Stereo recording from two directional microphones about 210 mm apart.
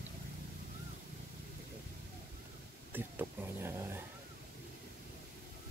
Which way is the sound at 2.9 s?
10° right (ahead or behind).